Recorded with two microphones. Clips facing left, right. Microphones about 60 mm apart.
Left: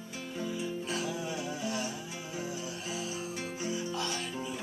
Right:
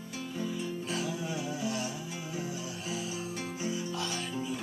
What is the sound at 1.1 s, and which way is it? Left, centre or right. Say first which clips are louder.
Music: right 1 dB; centre.